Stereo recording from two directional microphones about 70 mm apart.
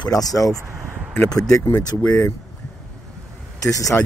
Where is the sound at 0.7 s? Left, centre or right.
Right.